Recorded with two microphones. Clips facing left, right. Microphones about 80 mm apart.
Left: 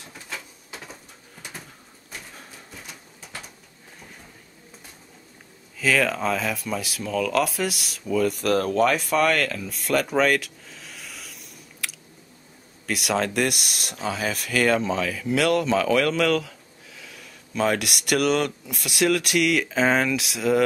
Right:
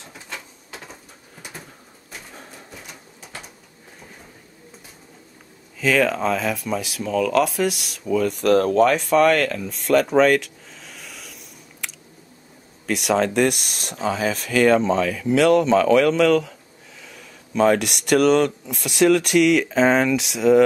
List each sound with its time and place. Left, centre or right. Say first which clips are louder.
0.1 s a sound: even; centre
2.1 s bird: right 2 dB; centre
5.8 s speech: right 3 dB; centre
11.8 s chewing: left 1 dB; centre
12.8 s speech: right 5 dB; centre